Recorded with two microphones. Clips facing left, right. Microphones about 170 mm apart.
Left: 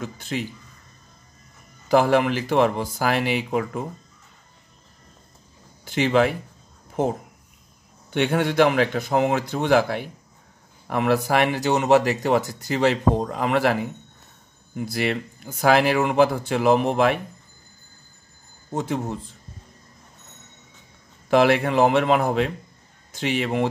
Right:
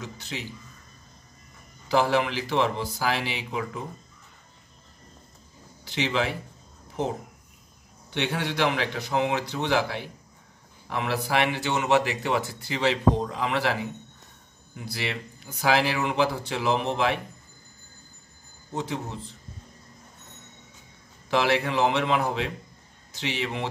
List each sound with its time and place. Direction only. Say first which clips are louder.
0.0 s speech: left 7 dB; 50° left (ahead or behind)
1.9 s speech: left 5 dB; 50° left (ahead or behind)
5.9 s speech: left 7 dB; 50° left (ahead or behind)
14.9 s speech: left 7 dB; 50° left (ahead or behind)
18.7 s speech: left 5 dB; 50° left (ahead or behind)
21.3 s speech: left 6 dB; 50° left (ahead or behind)